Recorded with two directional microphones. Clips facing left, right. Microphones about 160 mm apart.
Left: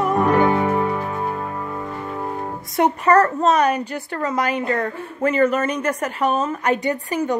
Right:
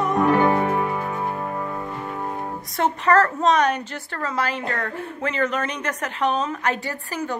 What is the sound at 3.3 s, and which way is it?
A woman's voice, 5° left (ahead or behind).